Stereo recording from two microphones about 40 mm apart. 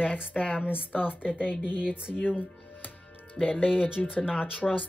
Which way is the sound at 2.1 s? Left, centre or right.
Left.